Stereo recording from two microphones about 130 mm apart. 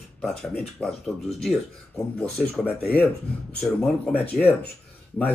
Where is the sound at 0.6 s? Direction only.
Centre (ahead or behind).